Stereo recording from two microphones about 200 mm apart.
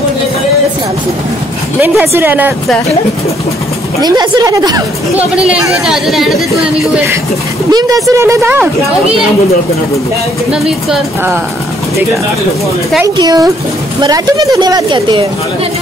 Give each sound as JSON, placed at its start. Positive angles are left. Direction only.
{"t": 1.8, "sound": "a woman's voice", "side_deg": -10}
{"t": 4.0, "sound": "a woman's voice", "side_deg": -20}
{"t": 5.3, "sound": "speech", "side_deg": -5}
{"t": 7.7, "sound": "a woman's voice", "side_deg": -15}
{"t": 10.5, "sound": "speech", "side_deg": -5}
{"t": 13.0, "sound": "a woman's voice", "side_deg": -20}